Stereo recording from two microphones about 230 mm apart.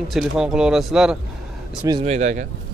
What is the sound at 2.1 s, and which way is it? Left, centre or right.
Speech, right.